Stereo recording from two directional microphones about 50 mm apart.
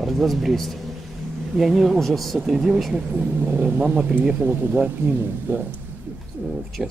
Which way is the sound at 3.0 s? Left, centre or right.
Right.